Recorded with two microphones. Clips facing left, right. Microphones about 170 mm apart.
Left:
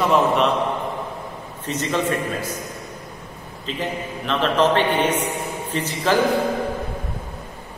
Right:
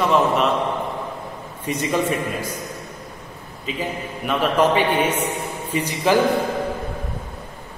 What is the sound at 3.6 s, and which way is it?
A man's voice, 10° right (ahead or behind).